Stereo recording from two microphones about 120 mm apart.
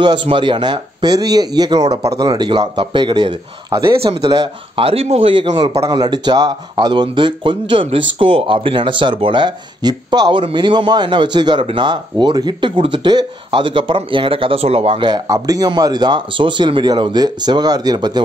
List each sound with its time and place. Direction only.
0.0 s speech: 40° right (ahead or behind)
15.2 s speech: 30° right (ahead or behind)